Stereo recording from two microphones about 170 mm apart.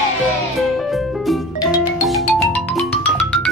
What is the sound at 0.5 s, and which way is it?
Music, centre (ahead or behind).